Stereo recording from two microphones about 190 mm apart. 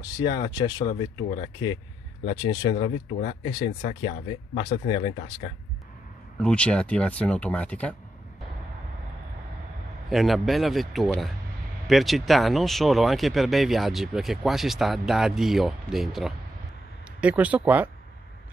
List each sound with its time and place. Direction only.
0.0 s speech: 20° left (ahead or behind)
2.2 s speech: 20° left (ahead or behind)
6.4 s speech: 5° left (ahead or behind)
10.0 s speech: centre (ahead or behind)